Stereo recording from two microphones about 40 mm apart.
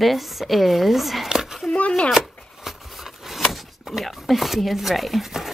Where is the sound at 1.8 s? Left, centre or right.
Left.